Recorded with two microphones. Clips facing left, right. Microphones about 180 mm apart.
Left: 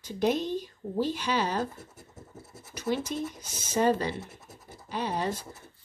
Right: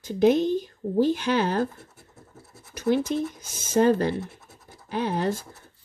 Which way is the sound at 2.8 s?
50° right (ahead or behind).